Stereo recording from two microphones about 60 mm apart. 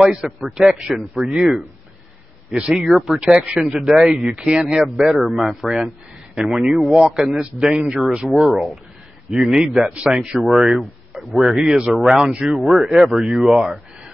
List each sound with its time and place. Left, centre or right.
0.0 s speech: centre
3.5 s speech: centre
9.3 s speech: centre
10.3 s speech: centre
12.5 s speech: centre